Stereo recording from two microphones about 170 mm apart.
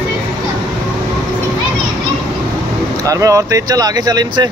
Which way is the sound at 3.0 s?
20° right (ahead or behind).